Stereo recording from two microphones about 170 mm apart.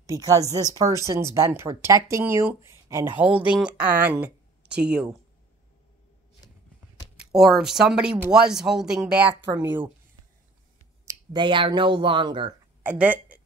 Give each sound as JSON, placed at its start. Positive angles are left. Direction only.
{"t": 0.0, "sound": "speech", "side_deg": -20}
{"t": 7.3, "sound": "speech", "side_deg": 0}
{"t": 9.3, "sound": "speech", "side_deg": -15}
{"t": 11.1, "sound": "speech", "side_deg": -30}
{"t": 12.8, "sound": "speech", "side_deg": -10}